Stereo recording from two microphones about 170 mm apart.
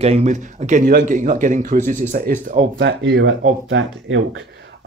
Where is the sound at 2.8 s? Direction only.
90° right.